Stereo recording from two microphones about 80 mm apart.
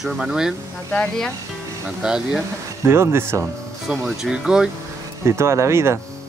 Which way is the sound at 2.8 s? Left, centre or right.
Right.